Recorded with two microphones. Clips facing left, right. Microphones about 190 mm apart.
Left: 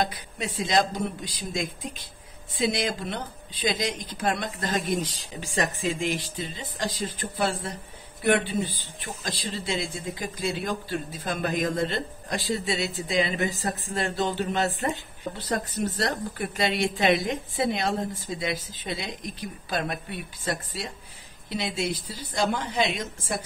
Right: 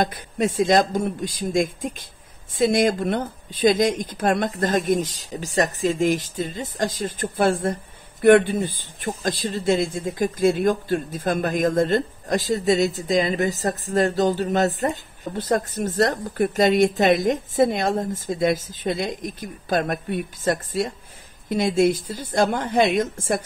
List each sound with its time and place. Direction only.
0.0 s speech: 50° right (ahead or behind)